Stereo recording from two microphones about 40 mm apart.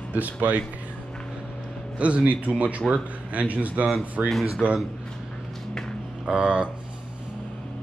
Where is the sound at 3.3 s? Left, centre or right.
Right.